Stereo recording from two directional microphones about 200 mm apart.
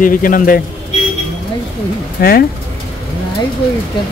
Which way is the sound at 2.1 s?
50° left (ahead or behind).